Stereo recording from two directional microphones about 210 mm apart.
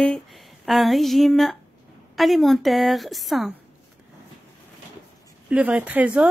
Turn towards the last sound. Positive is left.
turn(degrees=-5)  # may be behind; listen again after turning